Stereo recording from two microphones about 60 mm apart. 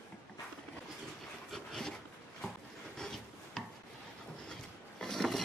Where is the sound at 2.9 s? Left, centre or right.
Centre.